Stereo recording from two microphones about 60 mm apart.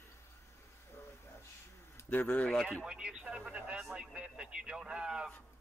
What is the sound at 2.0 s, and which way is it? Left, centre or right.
Speech, left.